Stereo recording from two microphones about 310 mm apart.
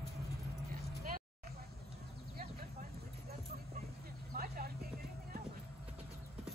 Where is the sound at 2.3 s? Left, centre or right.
Right.